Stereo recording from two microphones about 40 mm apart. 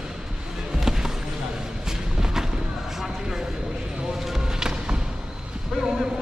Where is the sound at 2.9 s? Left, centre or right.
Centre.